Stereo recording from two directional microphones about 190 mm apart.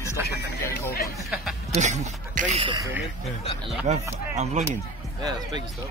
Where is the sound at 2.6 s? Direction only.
25° right (ahead or behind).